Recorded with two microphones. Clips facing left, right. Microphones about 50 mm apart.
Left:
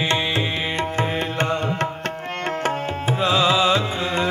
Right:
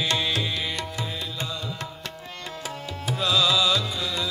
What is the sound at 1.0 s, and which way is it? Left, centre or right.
Music, left.